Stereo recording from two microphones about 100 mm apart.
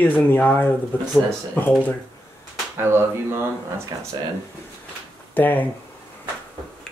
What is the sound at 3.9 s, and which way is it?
Speech, 45° right (ahead or behind).